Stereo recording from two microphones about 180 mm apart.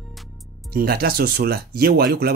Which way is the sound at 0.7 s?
60° right (ahead or behind).